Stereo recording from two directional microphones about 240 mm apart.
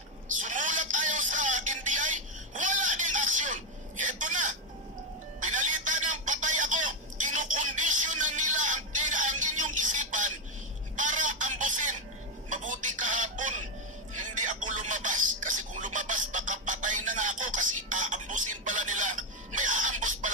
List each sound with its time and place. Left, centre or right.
0.4 s telephone: right
12.4 s a sound: right
14.1 s music: right